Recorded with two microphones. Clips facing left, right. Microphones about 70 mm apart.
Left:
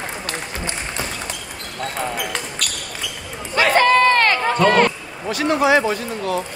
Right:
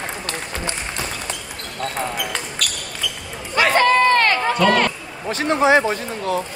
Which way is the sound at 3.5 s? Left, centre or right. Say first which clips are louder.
Left 1 dB; left.